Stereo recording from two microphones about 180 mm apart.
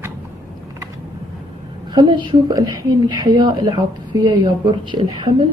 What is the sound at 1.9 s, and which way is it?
A woman's voice, 25° right (ahead or behind).